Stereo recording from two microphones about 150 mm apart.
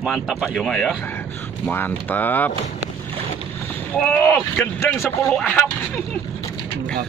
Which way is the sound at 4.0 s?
10° left (ahead or behind).